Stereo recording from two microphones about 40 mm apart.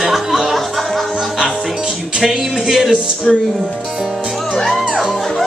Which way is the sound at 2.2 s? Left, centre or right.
Centre.